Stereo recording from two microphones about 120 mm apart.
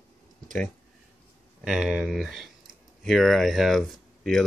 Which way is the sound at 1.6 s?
5° right (ahead or behind).